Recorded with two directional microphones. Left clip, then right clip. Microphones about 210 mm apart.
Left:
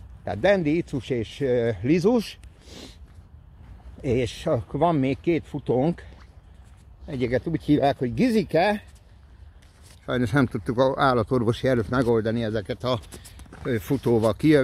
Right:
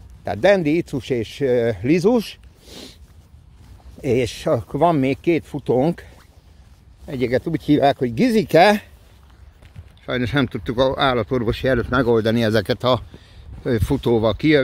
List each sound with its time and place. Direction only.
0.2 s speech: 40° right (ahead or behind); by 2.4 s 20° right (ahead or behind)
2.6 s a sound: 35° right (ahead or behind)
4.0 s speech: 40° right (ahead or behind)
10.0 s speech: 5° left (ahead or behind)
12.4 s speech: 50° right (ahead or behind)
12.7 s speech: 30° right (ahead or behind)
13.7 s speech: 20° right (ahead or behind)
14.1 s speech: centre (ahead or behind)